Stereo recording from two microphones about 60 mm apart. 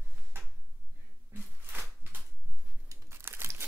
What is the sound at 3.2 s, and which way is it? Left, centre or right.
Crumpling, right.